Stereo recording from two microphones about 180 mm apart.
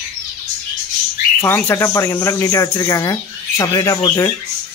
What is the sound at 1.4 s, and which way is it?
Speech, 15° left (ahead or behind).